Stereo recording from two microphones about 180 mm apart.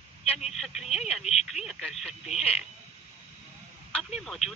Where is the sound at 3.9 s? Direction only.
Centre (ahead or behind).